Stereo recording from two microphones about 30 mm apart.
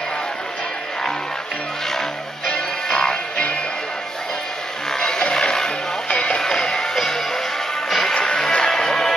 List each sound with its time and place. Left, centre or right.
2.4 s music: left
4.9 s a sound: left
5.3 s music: left
6.0 s music: left
6.3 s music: left
7.0 s music: centre
8.1 s music: left